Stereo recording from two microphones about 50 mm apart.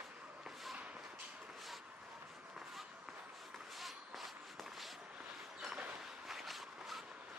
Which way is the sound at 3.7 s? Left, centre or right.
Centre.